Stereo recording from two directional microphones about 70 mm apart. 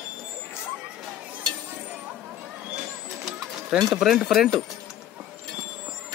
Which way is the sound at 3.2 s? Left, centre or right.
Centre.